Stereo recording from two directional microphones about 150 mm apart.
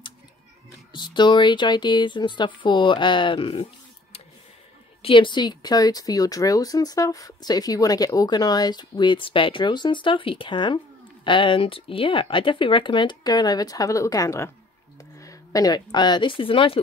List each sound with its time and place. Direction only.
0.9 s speech: 30° left (ahead or behind)
5.0 s speech: 35° left (ahead or behind)